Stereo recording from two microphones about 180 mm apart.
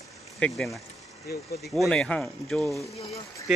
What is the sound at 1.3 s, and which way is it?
Speech, 60° left (ahead or behind).